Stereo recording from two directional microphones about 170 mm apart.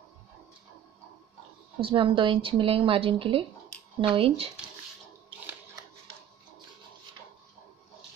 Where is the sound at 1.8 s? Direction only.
30° right (ahead or behind).